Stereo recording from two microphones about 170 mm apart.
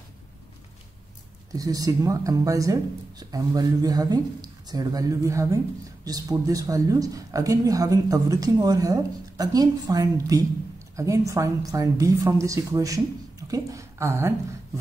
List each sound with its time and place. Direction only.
1.5 s a woman's voice: 20° right (ahead or behind)